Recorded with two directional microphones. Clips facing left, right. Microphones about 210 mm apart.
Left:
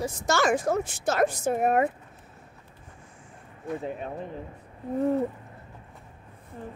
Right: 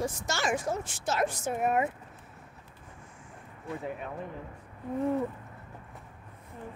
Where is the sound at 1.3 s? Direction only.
40° left (ahead or behind).